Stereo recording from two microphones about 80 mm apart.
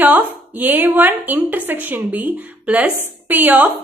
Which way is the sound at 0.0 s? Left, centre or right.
Right.